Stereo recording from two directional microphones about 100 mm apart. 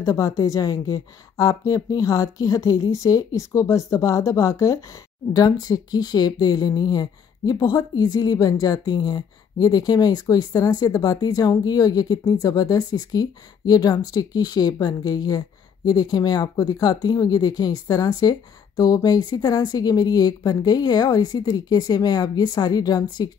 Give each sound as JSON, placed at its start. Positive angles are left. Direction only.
{"t": 0.0, "sound": "a woman's voice", "side_deg": 35}